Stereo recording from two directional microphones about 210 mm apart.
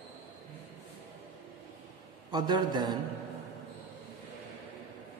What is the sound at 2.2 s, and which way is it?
Speech, 20° right (ahead or behind).